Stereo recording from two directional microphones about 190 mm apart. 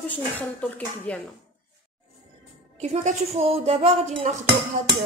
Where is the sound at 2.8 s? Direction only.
35° right (ahead or behind).